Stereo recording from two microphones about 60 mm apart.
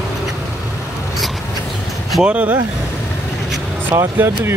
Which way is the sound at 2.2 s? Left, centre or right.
Right.